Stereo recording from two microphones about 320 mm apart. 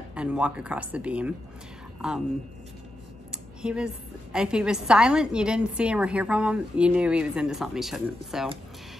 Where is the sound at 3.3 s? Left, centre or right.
Centre.